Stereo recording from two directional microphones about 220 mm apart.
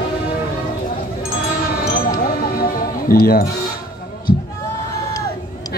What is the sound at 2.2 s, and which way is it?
Music, 40° left (ahead or behind).